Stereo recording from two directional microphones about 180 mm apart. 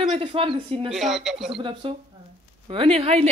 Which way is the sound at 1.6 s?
30° right (ahead or behind).